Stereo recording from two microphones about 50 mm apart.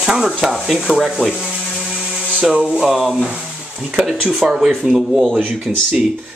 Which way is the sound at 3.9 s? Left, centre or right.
Centre.